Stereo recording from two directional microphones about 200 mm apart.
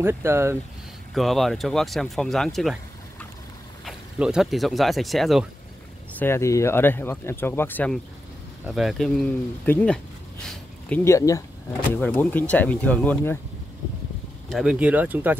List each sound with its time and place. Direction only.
0.0 s speech: 10° right (ahead or behind)
1.1 s speech: centre (ahead or behind)
6.1 s speech: 10° left (ahead or behind)
10.4 s a sound: 5° left (ahead or behind)
11.1 s speech: 15° left (ahead or behind)
14.5 s speech: 5° right (ahead or behind)